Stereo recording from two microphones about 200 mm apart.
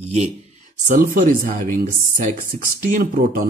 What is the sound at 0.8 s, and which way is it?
Speech, 45° right (ahead or behind).